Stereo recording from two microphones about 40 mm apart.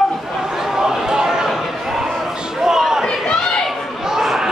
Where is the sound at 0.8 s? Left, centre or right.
Centre.